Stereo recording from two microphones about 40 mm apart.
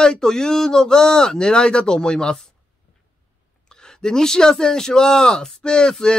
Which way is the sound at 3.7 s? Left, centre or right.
Centre.